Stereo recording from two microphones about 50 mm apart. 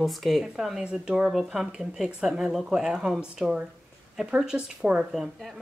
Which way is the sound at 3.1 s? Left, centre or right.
Right.